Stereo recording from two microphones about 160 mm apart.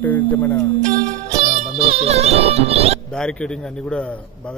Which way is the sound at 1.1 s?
50° right (ahead or behind).